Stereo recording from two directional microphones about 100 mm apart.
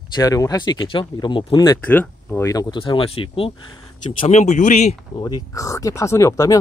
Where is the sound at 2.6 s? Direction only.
55° left (ahead or behind); by 4.4 s 75° left (ahead or behind).